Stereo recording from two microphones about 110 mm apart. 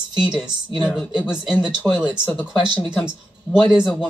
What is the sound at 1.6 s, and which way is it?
Speech, 10° right (ahead or behind).